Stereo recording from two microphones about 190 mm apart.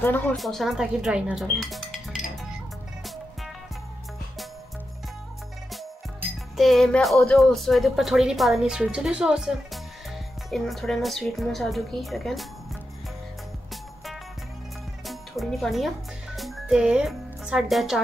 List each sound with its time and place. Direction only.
0.0 s speech: 10° left (ahead or behind)
6.5 s speech: centre (ahead or behind)
15.0 s music: centre (ahead or behind)
16.3 s speech: centre (ahead or behind)